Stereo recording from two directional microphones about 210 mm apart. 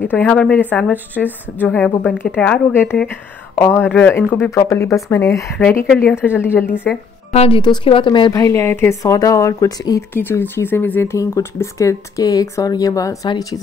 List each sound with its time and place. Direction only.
0.0 s speech: 10° left (ahead or behind)
7.3 s speech: 25° left (ahead or behind)